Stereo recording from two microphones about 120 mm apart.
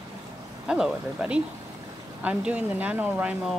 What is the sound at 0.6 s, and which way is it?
Speech, 5° right (ahead or behind).